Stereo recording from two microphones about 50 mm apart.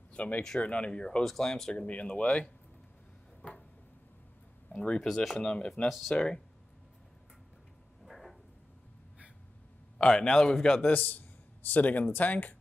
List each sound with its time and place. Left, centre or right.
0.1 s a sound: left
0.6 s speech: left
1.2 s a man's voice: centre
1.7 s speech: left
4.6 s speech: centre
5.0 s speech: centre
5.4 s a man's voice: centre
5.9 s speech: centre
6.1 s speech: centre
8.0 s a sound: centre
9.9 s a man's voice: centre
10.9 s speech: left